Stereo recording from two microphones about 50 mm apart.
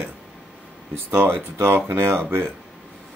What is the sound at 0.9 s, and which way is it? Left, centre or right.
Speech, right.